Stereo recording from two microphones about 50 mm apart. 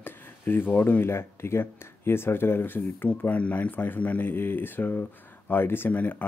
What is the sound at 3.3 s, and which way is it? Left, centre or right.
Speech, left.